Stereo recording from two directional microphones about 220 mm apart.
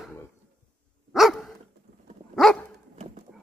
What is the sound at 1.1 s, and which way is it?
Dog, centre (ahead or behind).